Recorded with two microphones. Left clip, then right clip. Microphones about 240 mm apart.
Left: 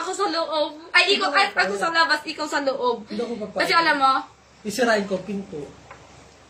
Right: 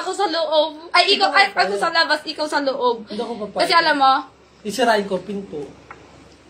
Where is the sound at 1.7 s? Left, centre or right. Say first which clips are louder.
Right 3 dB; centre.